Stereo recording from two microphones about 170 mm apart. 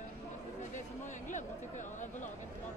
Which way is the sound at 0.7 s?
45° left (ahead or behind).